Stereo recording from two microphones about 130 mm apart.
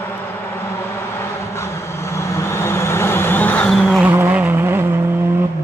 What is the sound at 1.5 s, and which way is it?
Vehicle, 20° left (ahead or behind).